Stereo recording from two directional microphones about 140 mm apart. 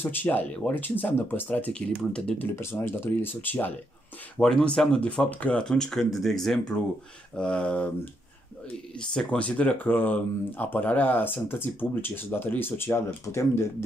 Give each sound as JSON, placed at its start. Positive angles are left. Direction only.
{"t": 0.0, "sound": "speech", "side_deg": 15}
{"t": 9.1, "sound": "speech", "side_deg": 10}